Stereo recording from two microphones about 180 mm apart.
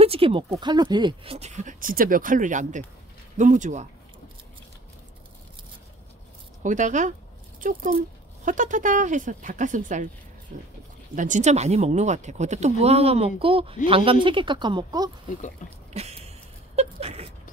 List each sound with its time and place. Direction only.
0.0 s speech: 30° right (ahead or behind)
6.6 s speech: 45° right (ahead or behind); by 15.0 s 25° right (ahead or behind)
15.9 s a sound: 35° right (ahead or behind)